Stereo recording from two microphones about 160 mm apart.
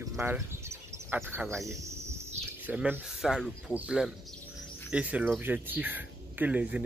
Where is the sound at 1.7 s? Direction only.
20° right (ahead or behind).